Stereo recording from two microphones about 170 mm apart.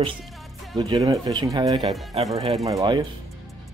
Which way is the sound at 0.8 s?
20° right (ahead or behind).